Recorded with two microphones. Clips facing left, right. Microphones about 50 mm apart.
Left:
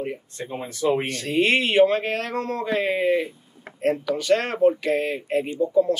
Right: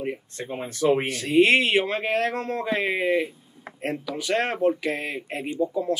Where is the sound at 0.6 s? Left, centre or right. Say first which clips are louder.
Right 1 dB; right.